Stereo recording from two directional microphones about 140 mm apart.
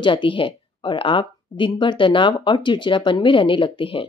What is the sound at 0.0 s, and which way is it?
Speech, 35° left (ahead or behind).